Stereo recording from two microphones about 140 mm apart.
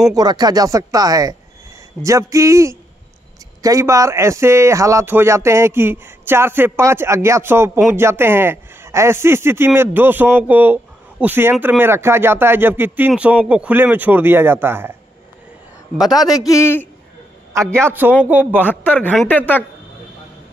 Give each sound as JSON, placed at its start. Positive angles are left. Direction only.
{"t": 0.1, "sound": "speech", "side_deg": -30}
{"t": 16.0, "sound": "a man's voice", "side_deg": 0}
{"t": 16.3, "sound": "a man's voice", "side_deg": 25}
{"t": 17.7, "sound": "speech", "side_deg": -15}
{"t": 19.2, "sound": "speech", "side_deg": 15}